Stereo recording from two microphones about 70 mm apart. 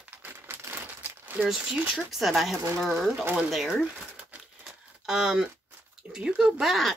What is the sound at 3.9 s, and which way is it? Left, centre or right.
Crumpling, centre.